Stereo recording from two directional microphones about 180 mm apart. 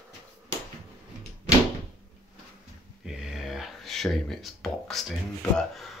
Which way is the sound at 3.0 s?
5° right (ahead or behind).